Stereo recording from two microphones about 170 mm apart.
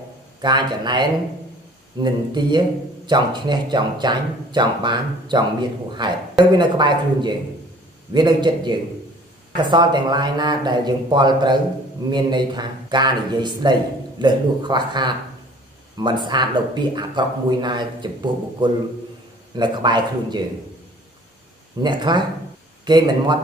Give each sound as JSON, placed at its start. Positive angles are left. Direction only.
{"t": 0.4, "sound": "speech", "side_deg": -25}
{"t": 21.8, "sound": "speech", "side_deg": -25}